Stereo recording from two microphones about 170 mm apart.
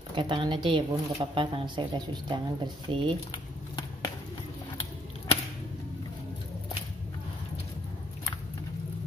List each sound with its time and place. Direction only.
0.1 s speech: 30° right (ahead or behind)